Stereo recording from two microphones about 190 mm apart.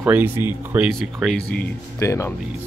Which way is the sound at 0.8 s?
Centre (ahead or behind).